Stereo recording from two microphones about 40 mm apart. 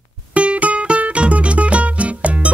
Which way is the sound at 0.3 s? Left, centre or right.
Right.